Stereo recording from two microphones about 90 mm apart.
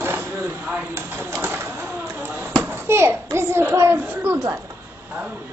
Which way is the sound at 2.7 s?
30° right (ahead or behind).